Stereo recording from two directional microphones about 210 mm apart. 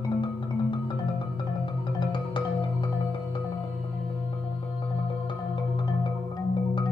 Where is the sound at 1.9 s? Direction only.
25° left (ahead or behind).